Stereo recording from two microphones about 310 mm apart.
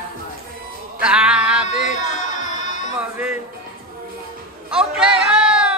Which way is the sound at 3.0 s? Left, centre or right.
Centre.